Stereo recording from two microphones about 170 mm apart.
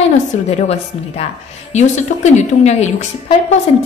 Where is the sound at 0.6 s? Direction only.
40° left (ahead or behind).